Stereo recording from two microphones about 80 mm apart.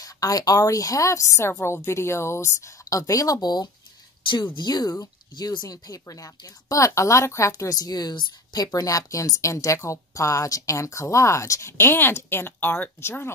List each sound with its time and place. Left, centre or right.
0.0 s speech: left
11.7 s speech: left